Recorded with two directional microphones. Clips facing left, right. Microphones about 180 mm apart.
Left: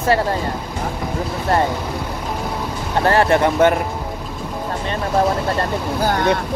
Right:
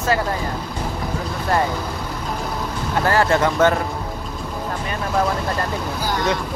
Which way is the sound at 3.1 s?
20° left (ahead or behind).